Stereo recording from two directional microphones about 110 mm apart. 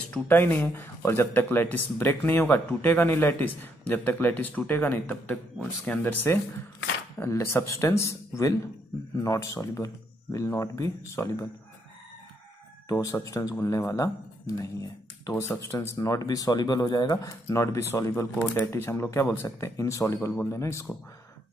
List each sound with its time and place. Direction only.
0.1 s speech: 15° left (ahead or behind)
12.8 s speech: 30° left (ahead or behind)